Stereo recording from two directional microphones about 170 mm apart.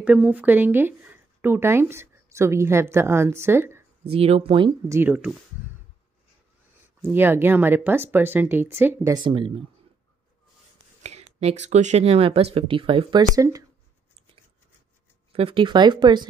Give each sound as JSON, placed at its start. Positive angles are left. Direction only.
{"t": 0.0, "sound": "speech", "side_deg": -10}
{"t": 4.1, "sound": "speech", "side_deg": -35}
{"t": 4.8, "sound": "speech", "side_deg": -15}
{"t": 7.0, "sound": "speech", "side_deg": -10}
{"t": 9.1, "sound": "speech", "side_deg": -30}
{"t": 11.0, "sound": "a sound", "side_deg": -40}
{"t": 11.6, "sound": "speech", "side_deg": -45}
{"t": 15.3, "sound": "speech", "side_deg": -30}